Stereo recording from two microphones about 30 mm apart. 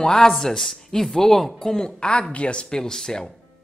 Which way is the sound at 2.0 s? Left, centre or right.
Left.